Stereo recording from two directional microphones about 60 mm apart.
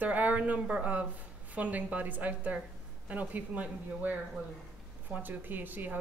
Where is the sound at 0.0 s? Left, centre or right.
Right.